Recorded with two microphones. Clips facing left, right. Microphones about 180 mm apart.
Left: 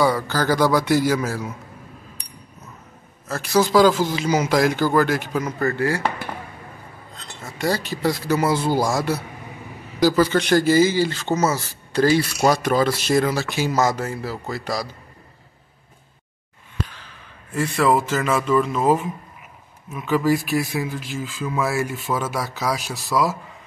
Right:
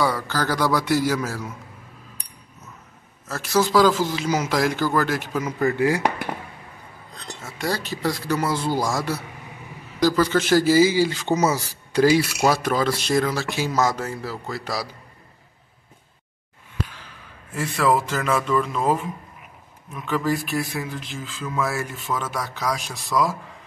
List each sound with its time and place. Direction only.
0.1 s speech: centre (ahead or behind)
3.3 s speech: centre (ahead or behind)
5.6 s speech: 15° right (ahead or behind)
7.4 s speech: centre (ahead or behind)
17.6 s speech: centre (ahead or behind)